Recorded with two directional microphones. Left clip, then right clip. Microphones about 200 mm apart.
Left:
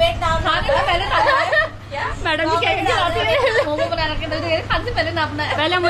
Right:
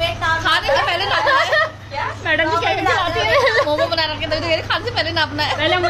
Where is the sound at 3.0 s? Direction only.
10° right (ahead or behind).